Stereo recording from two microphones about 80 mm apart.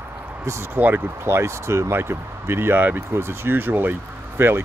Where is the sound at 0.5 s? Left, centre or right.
Right.